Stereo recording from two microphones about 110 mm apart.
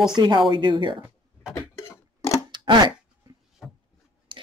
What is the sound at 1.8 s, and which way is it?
Tick-tock, 30° left (ahead or behind).